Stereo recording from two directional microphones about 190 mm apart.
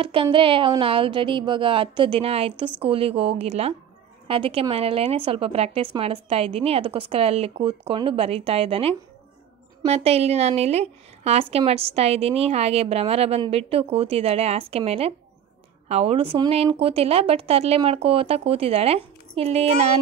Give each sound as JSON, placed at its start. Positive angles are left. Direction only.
{"t": 0.0, "sound": "a woman's voice", "side_deg": -25}